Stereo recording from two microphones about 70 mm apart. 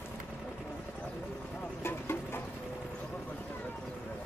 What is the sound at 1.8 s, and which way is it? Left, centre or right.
Vehicle, left.